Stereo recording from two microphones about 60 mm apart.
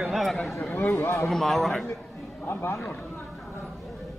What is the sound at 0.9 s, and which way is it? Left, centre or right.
Speech, left.